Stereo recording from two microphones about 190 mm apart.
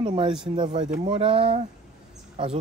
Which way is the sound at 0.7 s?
40° right (ahead or behind).